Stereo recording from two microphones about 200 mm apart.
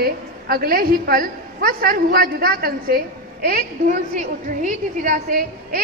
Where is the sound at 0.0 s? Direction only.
50° right (ahead or behind).